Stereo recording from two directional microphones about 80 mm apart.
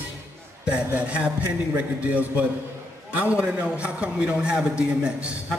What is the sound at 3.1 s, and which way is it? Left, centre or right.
A man's voice, centre.